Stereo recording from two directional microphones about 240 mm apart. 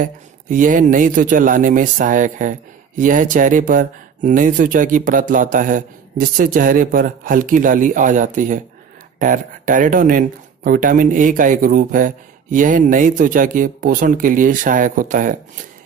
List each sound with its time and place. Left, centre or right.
0.0 s speech: right